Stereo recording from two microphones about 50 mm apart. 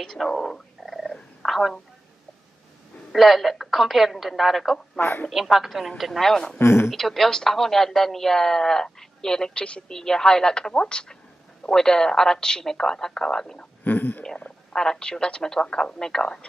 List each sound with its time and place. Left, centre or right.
0.0 s a woman's voice: centre
0.8 s purr: centre
1.4 s a sound: centre
3.1 s a woman's voice: centre
6.6 s speech: left
6.9 s a woman's voice: centre; by 9.9 s left
9.9 s a woman's voice: centre
13.8 s speech: left
14.7 s a woman's voice: centre